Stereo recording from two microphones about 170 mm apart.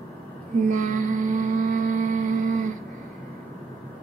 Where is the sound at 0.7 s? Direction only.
50° right (ahead or behind).